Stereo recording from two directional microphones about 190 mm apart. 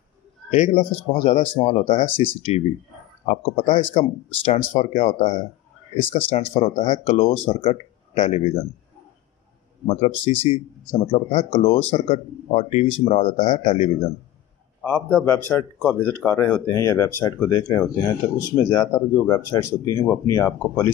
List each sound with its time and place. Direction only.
0.5 s speech: 35° left (ahead or behind)
9.8 s speech: 30° left (ahead or behind)
14.8 s speech: 10° left (ahead or behind)